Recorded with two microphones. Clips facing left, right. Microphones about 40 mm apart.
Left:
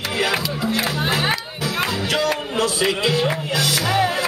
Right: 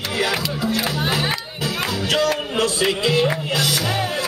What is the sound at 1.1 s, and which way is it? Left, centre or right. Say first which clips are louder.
Music: left 1 dB; centre.